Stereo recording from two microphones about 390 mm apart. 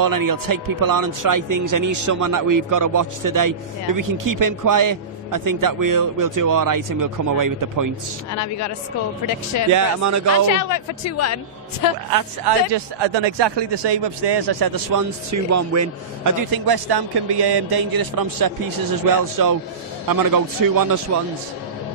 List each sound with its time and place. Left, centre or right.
0.0 s a man's voice: right
8.4 s speech: left
9.7 s a man's voice: right
10.5 s speech: left
12.1 s a man's voice: right
21.1 s a man's voice: right